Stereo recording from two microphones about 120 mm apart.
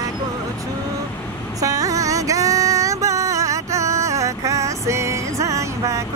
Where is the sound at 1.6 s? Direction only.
30° right (ahead or behind).